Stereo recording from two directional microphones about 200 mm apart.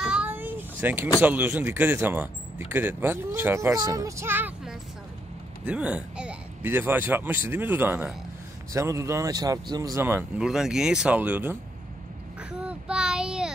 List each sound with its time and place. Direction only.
0.0 s vehicle: 5° right (ahead or behind)
1.2 s speech: 10° right (ahead or behind)
12.4 s child singing: 5° right (ahead or behind)